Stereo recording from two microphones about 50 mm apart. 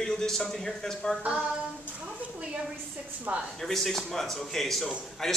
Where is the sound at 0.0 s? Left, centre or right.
Centre.